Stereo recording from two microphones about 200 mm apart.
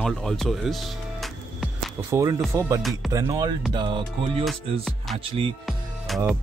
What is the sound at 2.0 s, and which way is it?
Speech, 15° right (ahead or behind).